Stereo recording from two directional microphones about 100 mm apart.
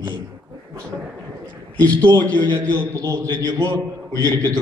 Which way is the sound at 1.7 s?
35° right (ahead or behind).